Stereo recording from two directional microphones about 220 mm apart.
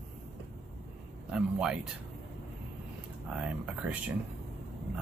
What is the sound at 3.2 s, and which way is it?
Speech, 5° right (ahead or behind).